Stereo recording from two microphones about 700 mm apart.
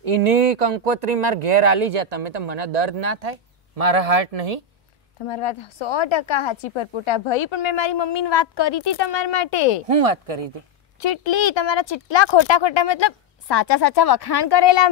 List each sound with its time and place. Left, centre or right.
0.0 s speech: right
5.2 s a woman's voice: left
9.8 s speech: right
11.0 s a woman's voice: left